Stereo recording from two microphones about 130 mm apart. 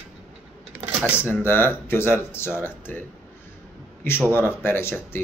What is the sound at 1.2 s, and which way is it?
A man's voice, 15° left (ahead or behind).